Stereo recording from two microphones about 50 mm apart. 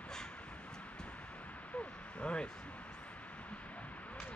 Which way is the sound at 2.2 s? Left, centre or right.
Centre.